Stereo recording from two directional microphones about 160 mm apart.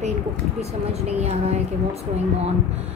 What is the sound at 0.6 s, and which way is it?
Speech, 40° right (ahead or behind).